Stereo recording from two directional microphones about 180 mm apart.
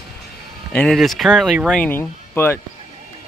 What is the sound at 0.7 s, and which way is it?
Speech, centre (ahead or behind).